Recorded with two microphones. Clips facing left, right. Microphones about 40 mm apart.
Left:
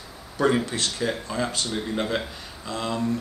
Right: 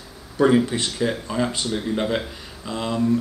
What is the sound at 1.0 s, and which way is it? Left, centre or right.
Speech, centre.